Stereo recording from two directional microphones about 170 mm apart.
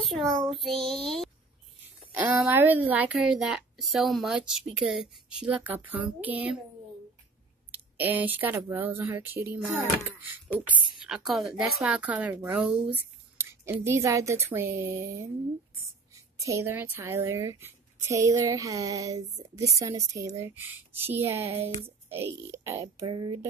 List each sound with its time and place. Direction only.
0.6 s a woman's voice: centre (ahead or behind)
2.2 s a woman's voice: 10° right (ahead or behind)
7.7 s speech: 10° right (ahead or behind)
10.7 s speech: 5° right (ahead or behind)
23.0 s speech: 25° right (ahead or behind)